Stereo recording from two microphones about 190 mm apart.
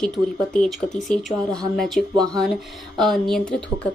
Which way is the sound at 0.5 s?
5° left (ahead or behind).